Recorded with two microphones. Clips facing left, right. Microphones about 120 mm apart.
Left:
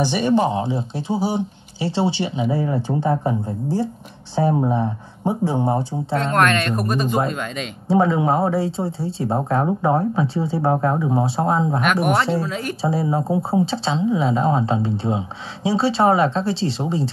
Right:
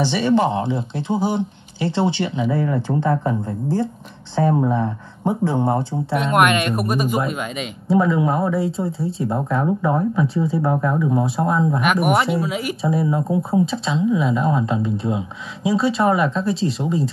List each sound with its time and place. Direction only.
0.0 s speech: 15° left (ahead or behind)
1.8 s speech: 20° left (ahead or behind)
6.1 s speech: 15° right (ahead or behind)
7.9 s speech: 30° left (ahead or behind)
11.8 s speech: 5° right (ahead or behind)
12.8 s speech: 30° left (ahead or behind)